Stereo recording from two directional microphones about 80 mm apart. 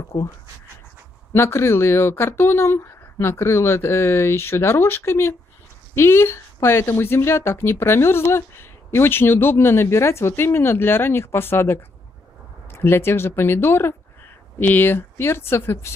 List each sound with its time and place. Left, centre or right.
0.1 s speech: left
1.3 s speech: left